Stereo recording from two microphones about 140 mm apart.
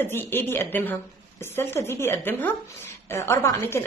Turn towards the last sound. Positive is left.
turn(degrees=20)  # may be behind; listen again after turning